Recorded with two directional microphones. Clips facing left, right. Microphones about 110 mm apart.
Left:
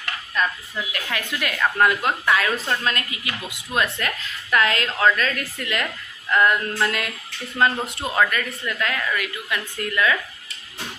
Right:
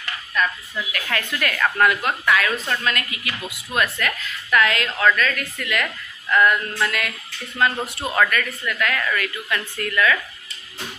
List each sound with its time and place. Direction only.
0.9 s a woman's voice: 15° left (ahead or behind)